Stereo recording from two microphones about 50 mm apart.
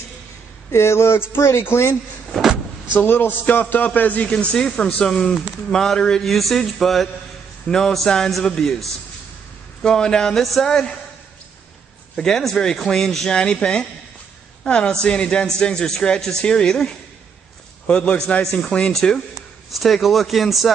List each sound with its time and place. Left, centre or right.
0.7 s speech: left
3.0 s a man's voice: left
4.2 s speech: left
5.7 s speech: centre
6.2 s speech: centre
9.8 s speech: centre
12.2 s speech: centre
14.9 s speech: centre
19.3 s a man's voice: centre